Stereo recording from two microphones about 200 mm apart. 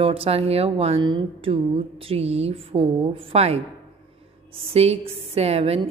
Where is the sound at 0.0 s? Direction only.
30° right (ahead or behind).